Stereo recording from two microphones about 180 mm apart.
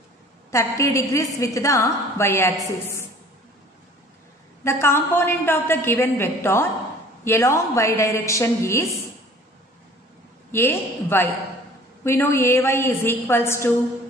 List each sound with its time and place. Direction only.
0.5 s a woman's voice: 15° left (ahead or behind)
4.6 s a woman's voice: 15° left (ahead or behind)
10.5 s a woman's voice: 10° left (ahead or behind)